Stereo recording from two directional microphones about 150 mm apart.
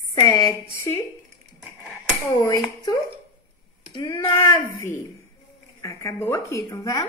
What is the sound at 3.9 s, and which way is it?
A woman's voice, 25° left (ahead or behind).